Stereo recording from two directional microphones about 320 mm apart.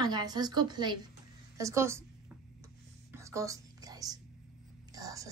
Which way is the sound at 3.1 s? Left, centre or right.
Centre.